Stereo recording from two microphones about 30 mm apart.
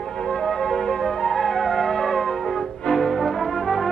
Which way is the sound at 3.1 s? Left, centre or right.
Centre.